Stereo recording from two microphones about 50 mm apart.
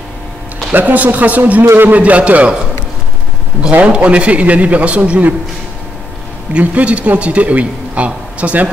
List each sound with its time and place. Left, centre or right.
0.7 s speech: right
1.6 s a man's voice: right
1.9 s speech: right
3.8 s speech: right
6.5 s speech: right